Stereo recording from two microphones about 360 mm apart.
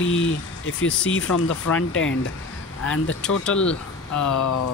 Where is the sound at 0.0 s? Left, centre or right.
Left.